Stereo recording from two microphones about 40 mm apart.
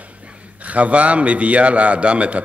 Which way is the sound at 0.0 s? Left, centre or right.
Right.